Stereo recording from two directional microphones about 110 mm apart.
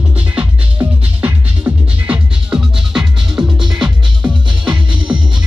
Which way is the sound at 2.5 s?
5° right (ahead or behind).